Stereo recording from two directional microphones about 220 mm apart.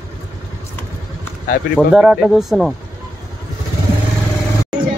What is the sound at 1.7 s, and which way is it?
Speech, 5° right (ahead or behind).